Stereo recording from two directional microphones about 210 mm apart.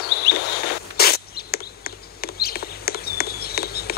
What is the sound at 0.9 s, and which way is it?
Bird, 50° left (ahead or behind).